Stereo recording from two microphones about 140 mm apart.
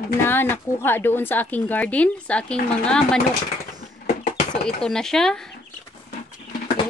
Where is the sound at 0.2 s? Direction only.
15° left (ahead or behind).